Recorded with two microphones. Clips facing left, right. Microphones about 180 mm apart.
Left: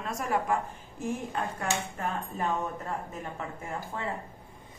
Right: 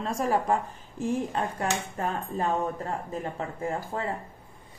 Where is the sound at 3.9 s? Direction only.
35° right (ahead or behind).